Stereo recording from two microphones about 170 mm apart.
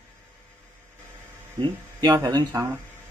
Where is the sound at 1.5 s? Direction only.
20° right (ahead or behind).